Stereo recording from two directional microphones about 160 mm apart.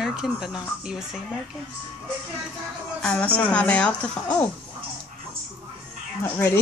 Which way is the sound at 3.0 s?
10° left (ahead or behind).